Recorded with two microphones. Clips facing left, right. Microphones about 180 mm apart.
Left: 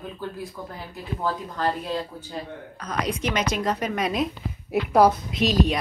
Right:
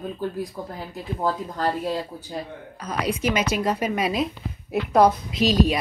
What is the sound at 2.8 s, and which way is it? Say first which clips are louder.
Speech: right 2 dB; 5° right (ahead or behind).